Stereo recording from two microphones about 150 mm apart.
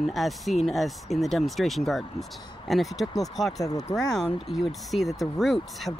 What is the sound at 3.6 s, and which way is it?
Speech, 25° left (ahead or behind).